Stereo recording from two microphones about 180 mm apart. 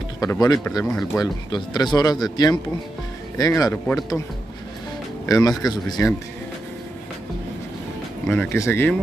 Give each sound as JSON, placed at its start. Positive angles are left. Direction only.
{"t": 0.2, "sound": "speech", "side_deg": 20}
{"t": 0.8, "sound": "speech", "side_deg": 5}
{"t": 1.2, "sound": "speech", "side_deg": 20}
{"t": 5.2, "sound": "speech", "side_deg": 20}
{"t": 8.3, "sound": "speech", "side_deg": 10}